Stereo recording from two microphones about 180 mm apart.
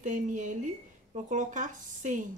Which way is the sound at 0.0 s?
45° right (ahead or behind).